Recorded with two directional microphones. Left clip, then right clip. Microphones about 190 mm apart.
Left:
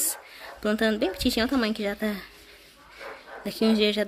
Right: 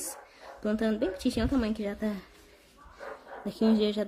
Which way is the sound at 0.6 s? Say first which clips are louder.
Left 5 dB; 5° left (ahead or behind).